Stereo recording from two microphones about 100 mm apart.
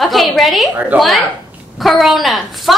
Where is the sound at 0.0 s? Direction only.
Centre (ahead or behind).